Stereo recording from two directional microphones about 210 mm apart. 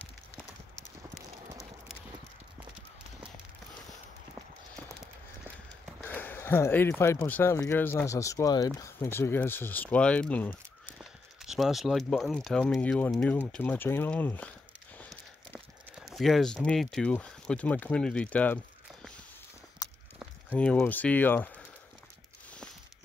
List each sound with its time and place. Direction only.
6.0 s speech: 10° left (ahead or behind)
15.0 s a sound: 5° left (ahead or behind)
16.1 s speech: centre (ahead or behind)
19.8 s walk: 20° left (ahead or behind)
20.5 s speech: 5° left (ahead or behind)